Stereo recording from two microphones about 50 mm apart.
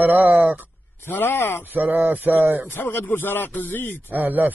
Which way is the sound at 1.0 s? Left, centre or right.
Left.